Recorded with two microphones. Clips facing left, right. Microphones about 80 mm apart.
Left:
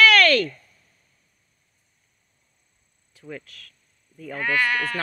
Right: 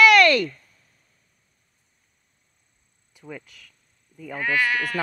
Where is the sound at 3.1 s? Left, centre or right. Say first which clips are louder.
Left 1 dB; centre.